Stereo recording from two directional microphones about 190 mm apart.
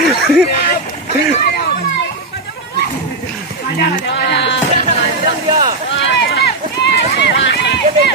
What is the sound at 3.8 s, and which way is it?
Speech, 60° left (ahead or behind).